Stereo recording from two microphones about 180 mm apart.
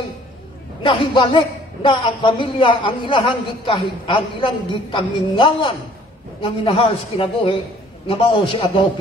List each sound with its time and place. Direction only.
0.8 s a man's voice: 30° left (ahead or behind)